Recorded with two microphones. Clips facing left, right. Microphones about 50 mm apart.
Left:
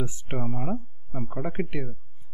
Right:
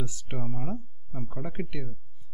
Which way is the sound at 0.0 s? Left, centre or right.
Left.